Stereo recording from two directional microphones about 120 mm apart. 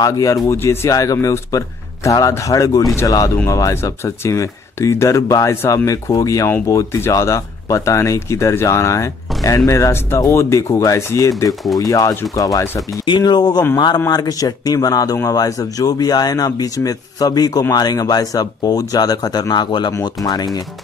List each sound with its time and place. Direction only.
0.0 s speech: 25° left (ahead or behind)
20.2 s speech: centre (ahead or behind)